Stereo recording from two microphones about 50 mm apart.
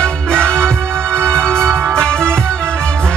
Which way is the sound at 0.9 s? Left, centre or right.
Right.